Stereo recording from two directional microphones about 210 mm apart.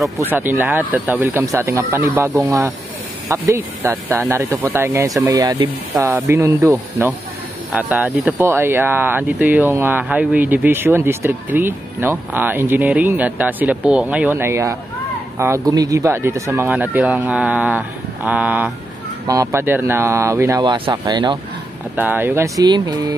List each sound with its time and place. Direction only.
0.2 s speech: 10° right (ahead or behind)
21.9 s speech: 10° right (ahead or behind)